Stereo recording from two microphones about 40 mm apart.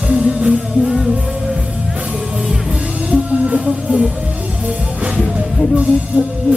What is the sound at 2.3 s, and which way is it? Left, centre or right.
Music, centre.